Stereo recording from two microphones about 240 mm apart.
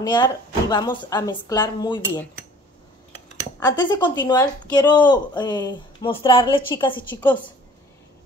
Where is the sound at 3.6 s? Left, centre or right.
Centre.